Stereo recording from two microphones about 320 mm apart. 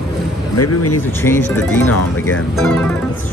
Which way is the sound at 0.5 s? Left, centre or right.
Left.